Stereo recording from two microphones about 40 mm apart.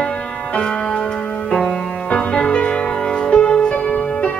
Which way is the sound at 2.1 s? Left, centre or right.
Left.